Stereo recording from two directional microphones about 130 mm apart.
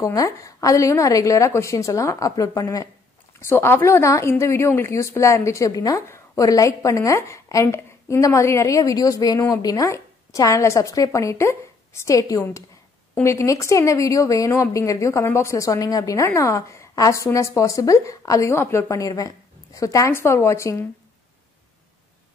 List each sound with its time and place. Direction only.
0.0 s speech: 25° left (ahead or behind)